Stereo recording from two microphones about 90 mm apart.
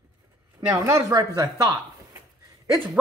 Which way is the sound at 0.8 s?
35° right (ahead or behind).